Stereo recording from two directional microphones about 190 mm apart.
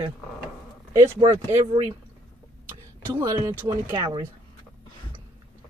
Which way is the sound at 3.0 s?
15° right (ahead or behind).